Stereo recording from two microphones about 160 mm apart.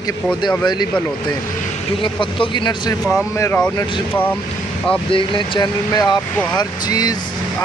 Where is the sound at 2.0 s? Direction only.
30° left (ahead or behind).